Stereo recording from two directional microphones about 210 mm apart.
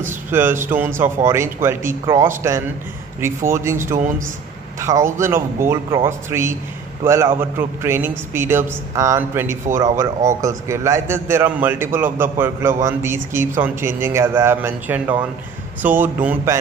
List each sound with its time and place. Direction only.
0.3 s a man's voice: 10° right (ahead or behind)